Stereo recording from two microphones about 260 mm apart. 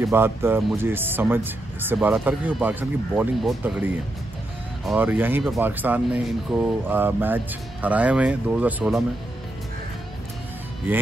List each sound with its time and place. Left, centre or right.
0.0 s speech: centre